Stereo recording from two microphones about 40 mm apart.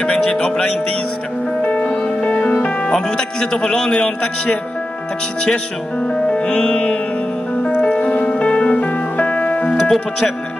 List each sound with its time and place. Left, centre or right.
0.0 s music: left
2.9 s a man's voice: centre
6.0 s music: left